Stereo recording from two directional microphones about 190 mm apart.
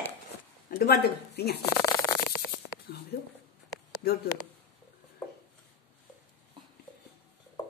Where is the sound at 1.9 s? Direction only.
20° left (ahead or behind).